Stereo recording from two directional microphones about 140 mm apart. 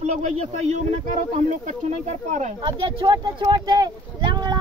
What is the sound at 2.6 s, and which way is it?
Speech, 35° right (ahead or behind).